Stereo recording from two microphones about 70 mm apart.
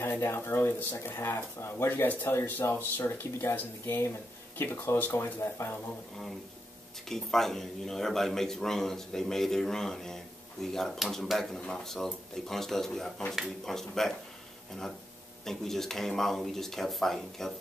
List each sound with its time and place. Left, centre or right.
0.0 s speech: left
7.1 s a man's voice: centre
15.4 s a man's voice: centre